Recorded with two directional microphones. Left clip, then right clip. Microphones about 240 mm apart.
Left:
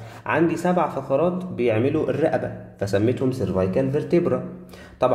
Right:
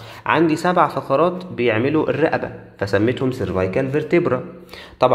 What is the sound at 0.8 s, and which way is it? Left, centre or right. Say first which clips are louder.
Speech: right 7 dB; right.